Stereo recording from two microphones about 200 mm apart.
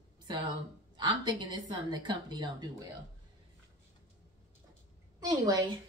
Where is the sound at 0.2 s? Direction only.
20° right (ahead or behind).